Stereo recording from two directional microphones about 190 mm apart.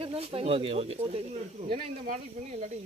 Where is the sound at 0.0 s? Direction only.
30° right (ahead or behind).